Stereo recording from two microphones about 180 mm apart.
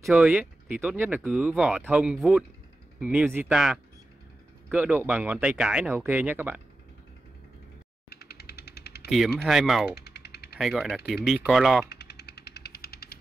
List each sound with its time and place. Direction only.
0.0 s speech: 5° right (ahead or behind)
8.1 s a sound: 65° left (ahead or behind)
9.1 s speech: centre (ahead or behind)
9.9 s a sound: 65° left (ahead or behind)
10.6 s speech: centre (ahead or behind)
11.9 s machine gun: 65° left (ahead or behind)